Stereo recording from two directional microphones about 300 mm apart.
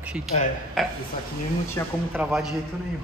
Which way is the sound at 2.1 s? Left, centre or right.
Centre.